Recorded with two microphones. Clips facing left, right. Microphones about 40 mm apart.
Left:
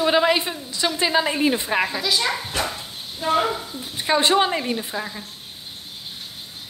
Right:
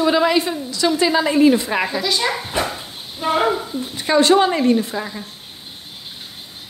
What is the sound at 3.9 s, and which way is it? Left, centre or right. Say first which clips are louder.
Speech: right 4 dB; centre.